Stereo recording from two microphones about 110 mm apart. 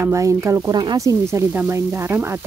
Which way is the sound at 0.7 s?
40° right (ahead or behind).